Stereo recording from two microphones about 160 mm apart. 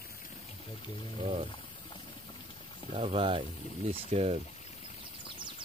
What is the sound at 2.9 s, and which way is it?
Speech, 35° right (ahead or behind).